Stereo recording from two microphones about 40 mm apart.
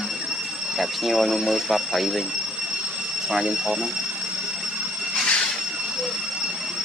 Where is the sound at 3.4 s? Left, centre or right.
Right.